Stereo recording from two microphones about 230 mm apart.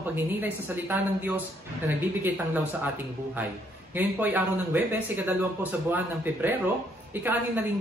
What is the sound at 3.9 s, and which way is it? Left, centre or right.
A woman's voice, centre.